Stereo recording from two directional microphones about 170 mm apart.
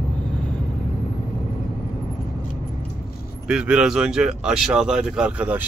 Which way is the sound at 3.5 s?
5° right (ahead or behind).